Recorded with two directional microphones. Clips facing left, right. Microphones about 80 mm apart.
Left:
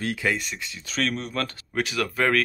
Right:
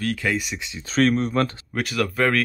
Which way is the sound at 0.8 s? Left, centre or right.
Right.